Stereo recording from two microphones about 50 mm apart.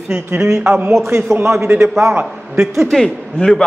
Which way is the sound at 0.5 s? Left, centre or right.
Right.